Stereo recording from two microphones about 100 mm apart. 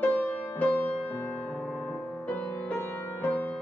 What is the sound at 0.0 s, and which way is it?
Music, 20° left (ahead or behind).